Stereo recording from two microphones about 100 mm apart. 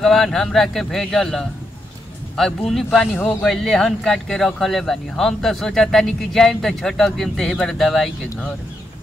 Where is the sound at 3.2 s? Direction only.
20° left (ahead or behind).